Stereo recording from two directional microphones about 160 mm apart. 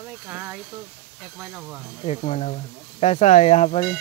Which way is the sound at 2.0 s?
45° left (ahead or behind).